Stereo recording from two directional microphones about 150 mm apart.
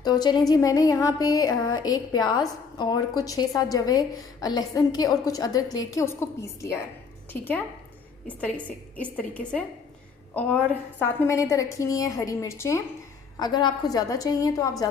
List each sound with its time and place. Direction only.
0.0 s a woman's voice: 25° left (ahead or behind)
13.4 s speech: 30° left (ahead or behind)